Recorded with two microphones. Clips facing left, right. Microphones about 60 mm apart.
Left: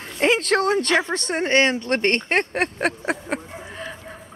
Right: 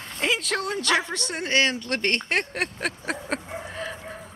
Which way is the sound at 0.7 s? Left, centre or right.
Left.